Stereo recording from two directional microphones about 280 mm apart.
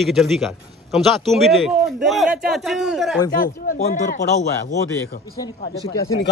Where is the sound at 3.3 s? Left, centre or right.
Left.